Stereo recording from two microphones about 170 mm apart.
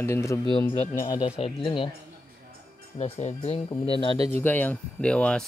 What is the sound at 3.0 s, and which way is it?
Speech, 40° left (ahead or behind).